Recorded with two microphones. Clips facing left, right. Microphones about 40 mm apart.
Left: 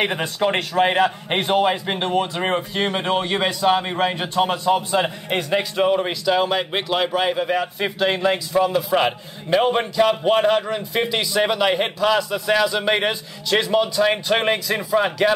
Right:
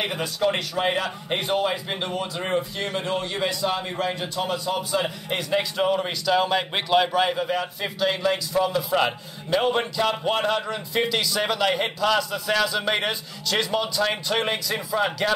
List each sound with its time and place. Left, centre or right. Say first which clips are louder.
0.0 s a man's voice: left 3 dB; left; by 7.4 s centre
7.8 s a man's voice: left 3 dB; left